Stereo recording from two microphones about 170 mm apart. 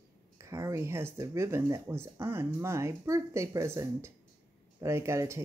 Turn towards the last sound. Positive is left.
turn(degrees=-15)  # may be behind; listen again after turning